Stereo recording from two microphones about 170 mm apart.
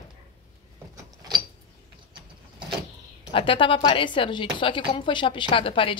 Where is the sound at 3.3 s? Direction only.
30° left (ahead or behind).